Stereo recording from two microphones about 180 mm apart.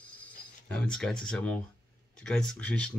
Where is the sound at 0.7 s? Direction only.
5° left (ahead or behind).